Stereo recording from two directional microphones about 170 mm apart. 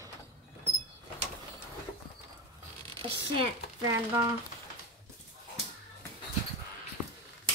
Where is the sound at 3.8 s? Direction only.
20° right (ahead or behind).